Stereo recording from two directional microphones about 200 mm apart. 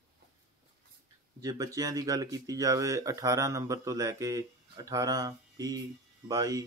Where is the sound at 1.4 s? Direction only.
20° right (ahead or behind).